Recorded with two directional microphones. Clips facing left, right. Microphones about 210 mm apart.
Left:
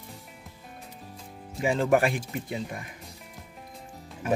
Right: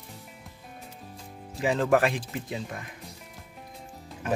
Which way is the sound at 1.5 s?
Centre (ahead or behind).